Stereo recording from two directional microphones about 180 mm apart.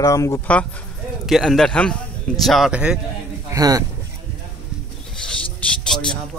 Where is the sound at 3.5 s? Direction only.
20° right (ahead or behind).